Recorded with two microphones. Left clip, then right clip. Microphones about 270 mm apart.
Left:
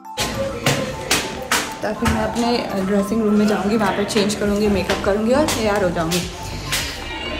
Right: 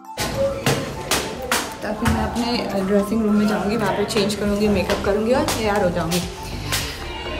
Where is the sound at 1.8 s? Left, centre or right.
Centre.